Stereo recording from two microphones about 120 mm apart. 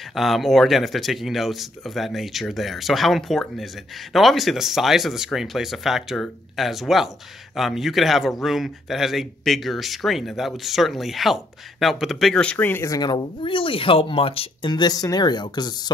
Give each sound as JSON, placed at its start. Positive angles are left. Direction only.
{"t": 0.1, "sound": "a man's voice", "side_deg": 0}
{"t": 13.0, "sound": "speech", "side_deg": 40}
{"t": 14.7, "sound": "speech", "side_deg": 35}